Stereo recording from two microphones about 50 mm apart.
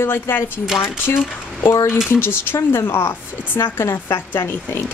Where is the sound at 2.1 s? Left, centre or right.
Left.